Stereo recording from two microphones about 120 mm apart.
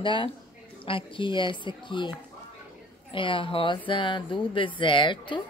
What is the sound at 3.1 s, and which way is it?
A woman's voice, 45° left (ahead or behind).